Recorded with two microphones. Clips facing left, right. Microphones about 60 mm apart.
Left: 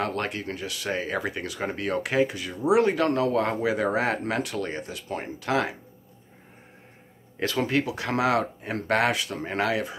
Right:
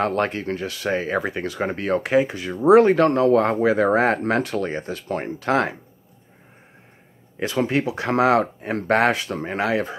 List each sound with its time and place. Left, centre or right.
0.0 s speech: right
7.3 s speech: right